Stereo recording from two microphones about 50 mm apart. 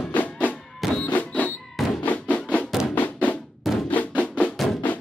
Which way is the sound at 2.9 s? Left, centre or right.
Left.